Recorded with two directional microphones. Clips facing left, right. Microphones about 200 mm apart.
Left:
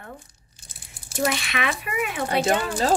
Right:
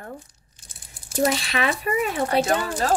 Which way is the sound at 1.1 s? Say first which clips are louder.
Right 3 dB; 35° right (ahead or behind).